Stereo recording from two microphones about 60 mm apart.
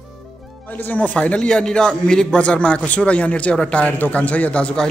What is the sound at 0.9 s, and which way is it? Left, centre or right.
A man's voice, left.